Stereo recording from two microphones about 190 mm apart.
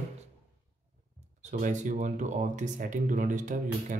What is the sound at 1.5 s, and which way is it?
Speech, 40° right (ahead or behind).